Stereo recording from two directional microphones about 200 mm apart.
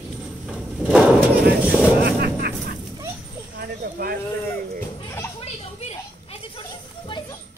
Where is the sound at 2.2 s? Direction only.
50° right (ahead or behind).